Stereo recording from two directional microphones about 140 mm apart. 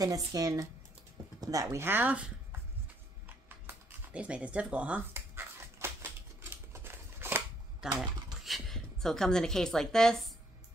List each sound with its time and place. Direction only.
0.0 s speech: 25° right (ahead or behind); by 2.3 s 10° right (ahead or behind)
3.4 s a sound: 10° right (ahead or behind)
7.8 s a woman's voice: 5° right (ahead or behind)